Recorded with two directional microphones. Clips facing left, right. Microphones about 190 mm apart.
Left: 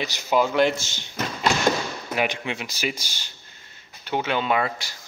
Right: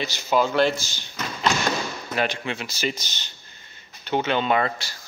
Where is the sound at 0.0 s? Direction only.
15° left (ahead or behind).